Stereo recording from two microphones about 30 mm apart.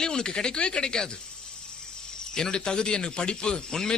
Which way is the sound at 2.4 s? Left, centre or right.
Left.